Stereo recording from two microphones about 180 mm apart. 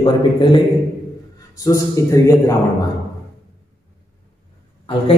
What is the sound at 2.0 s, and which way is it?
Speech, 15° left (ahead or behind).